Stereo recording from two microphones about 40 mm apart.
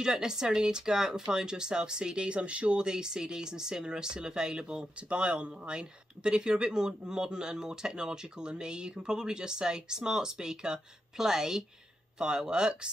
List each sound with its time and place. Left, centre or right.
0.0 s speech: centre